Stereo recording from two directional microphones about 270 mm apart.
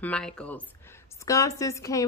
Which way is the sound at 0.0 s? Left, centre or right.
Centre.